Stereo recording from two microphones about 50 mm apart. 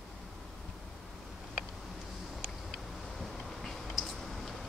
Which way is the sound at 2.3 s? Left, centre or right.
Centre.